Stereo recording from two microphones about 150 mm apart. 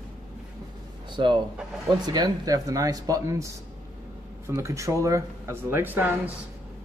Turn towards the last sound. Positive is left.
turn(degrees=-10)  # may be behind; listen again after turning